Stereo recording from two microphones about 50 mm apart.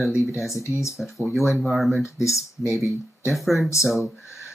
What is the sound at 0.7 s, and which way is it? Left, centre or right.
Speech, left.